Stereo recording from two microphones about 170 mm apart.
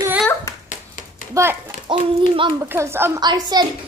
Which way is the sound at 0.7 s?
50° left (ahead or behind).